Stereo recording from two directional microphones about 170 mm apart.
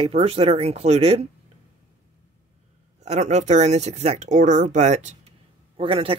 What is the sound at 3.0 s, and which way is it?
Speech, 40° right (ahead or behind).